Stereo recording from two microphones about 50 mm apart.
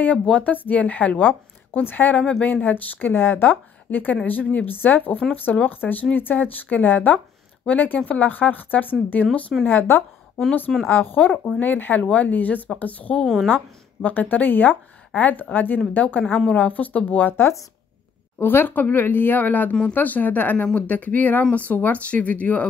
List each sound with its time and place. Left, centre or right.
0.0 s speech: left
9.7 s a woman's voice: left
17.3 s a woman's voice: left
20.6 s speech: left
20.9 s speech: left